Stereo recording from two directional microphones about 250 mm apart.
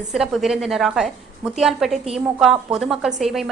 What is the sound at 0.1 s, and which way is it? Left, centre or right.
A woman's voice, centre.